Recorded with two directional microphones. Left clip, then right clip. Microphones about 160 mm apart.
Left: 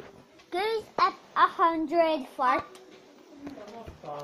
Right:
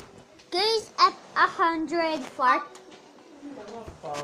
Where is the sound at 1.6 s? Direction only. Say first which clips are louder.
Left 1 dB; 20° left (ahead or behind).